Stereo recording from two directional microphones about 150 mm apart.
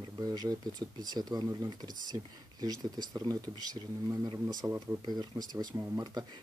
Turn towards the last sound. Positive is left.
turn(degrees=-25)  # may be behind; listen again after turning